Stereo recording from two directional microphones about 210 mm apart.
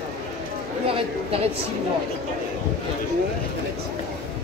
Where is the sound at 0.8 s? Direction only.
25° right (ahead or behind).